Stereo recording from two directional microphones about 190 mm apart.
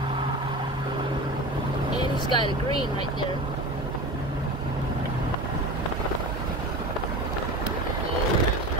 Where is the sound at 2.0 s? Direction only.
25° left (ahead or behind).